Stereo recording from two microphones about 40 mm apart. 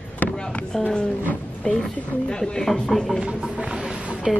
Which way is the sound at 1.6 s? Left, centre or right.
Left.